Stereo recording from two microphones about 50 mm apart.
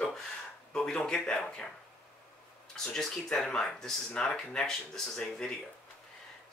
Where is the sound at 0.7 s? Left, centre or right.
Centre.